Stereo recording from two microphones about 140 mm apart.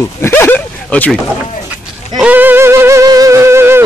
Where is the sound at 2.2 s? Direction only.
15° right (ahead or behind).